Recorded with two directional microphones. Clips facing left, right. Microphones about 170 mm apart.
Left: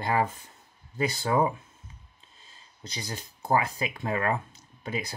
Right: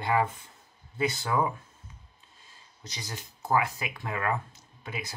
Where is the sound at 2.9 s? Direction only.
30° left (ahead or behind).